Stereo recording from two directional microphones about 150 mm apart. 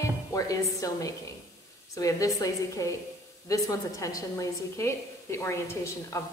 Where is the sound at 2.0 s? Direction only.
20° left (ahead or behind).